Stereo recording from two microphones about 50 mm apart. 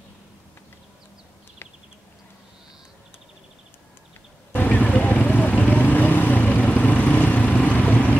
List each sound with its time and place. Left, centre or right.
4.5 s vehicle: left